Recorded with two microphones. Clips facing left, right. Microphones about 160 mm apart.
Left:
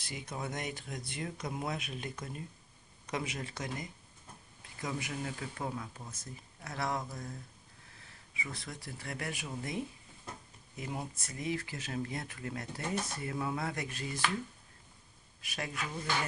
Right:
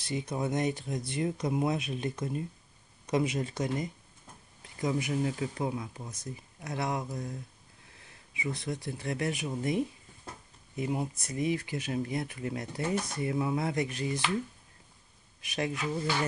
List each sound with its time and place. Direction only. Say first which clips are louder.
0.1 s speech: right 8 dB; 20° right (ahead or behind)
8.4 s speech: right 9 dB; 20° right (ahead or behind)
10.8 s speech: right 8 dB; 15° right (ahead or behind)
15.4 s speech: right 8 dB; 20° right (ahead or behind)